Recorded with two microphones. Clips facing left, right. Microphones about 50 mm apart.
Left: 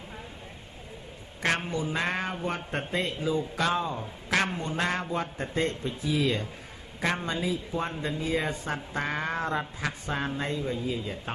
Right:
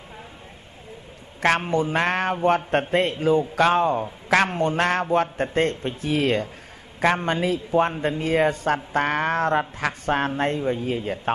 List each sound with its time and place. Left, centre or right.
1.7 s speech: right